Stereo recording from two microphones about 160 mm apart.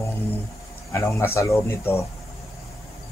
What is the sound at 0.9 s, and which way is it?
A man's voice, 15° left (ahead or behind).